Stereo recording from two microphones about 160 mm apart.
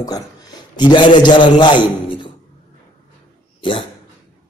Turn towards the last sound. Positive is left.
turn(degrees=35)  # may be behind; listen again after turning